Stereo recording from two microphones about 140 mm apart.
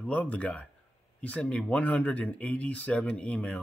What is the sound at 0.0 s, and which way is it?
Speech, 10° left (ahead or behind).